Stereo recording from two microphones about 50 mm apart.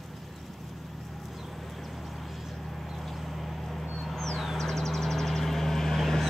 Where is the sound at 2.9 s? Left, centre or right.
Centre.